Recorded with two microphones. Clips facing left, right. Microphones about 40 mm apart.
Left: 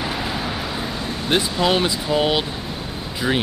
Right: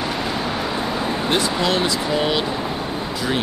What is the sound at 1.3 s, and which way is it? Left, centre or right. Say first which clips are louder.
Speech: left 3 dB; centre.